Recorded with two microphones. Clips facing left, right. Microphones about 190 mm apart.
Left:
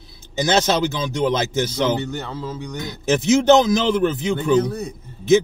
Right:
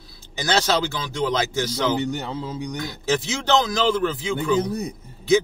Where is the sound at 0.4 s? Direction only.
20° left (ahead or behind).